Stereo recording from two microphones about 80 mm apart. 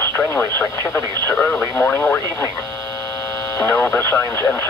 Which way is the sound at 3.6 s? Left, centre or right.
Left.